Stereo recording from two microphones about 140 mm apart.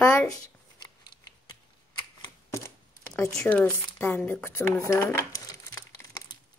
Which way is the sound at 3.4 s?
10° left (ahead or behind).